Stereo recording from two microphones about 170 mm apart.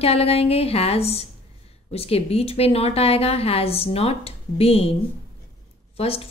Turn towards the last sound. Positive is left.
turn(degrees=35)  # may be behind; listen again after turning